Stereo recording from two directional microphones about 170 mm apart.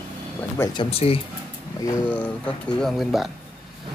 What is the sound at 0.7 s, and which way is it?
Speech, 30° left (ahead or behind).